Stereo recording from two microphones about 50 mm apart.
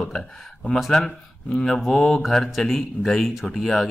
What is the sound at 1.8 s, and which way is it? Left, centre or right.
Speech, centre.